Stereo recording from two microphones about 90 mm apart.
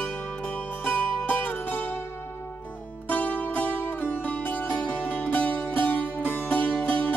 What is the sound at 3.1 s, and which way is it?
Music, 15° left (ahead or behind).